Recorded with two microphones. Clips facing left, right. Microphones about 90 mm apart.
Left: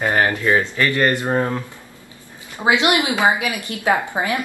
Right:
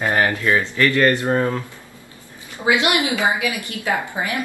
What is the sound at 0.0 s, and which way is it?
A woman's voice, 20° left (ahead or behind).